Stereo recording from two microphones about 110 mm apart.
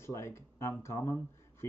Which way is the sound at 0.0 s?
25° left (ahead or behind).